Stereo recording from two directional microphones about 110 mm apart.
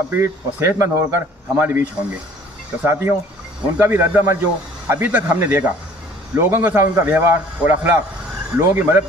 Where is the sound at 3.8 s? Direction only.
20° right (ahead or behind).